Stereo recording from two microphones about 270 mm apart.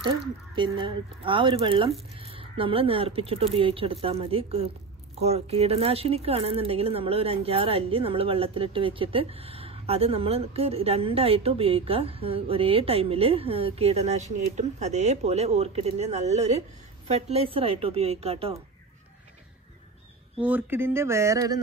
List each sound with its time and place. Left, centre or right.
0.6 s speech: centre
20.3 s speech: centre